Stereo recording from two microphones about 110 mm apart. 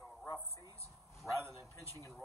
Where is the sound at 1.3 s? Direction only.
30° right (ahead or behind).